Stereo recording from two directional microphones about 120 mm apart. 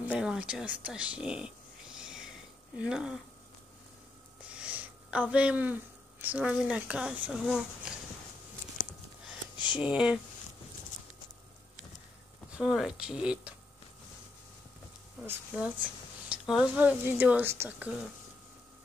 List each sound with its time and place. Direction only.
0.1 s a sound: 5° right (ahead or behind)
4.6 s speech: 10° right (ahead or behind)
9.8 s speech: 5° right (ahead or behind)
12.5 s speech: 5° right (ahead or behind)
15.5 s speech: 10° right (ahead or behind)
16.8 s speech: 15° right (ahead or behind)